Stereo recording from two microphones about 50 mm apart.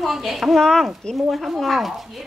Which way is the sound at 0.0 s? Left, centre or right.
Centre.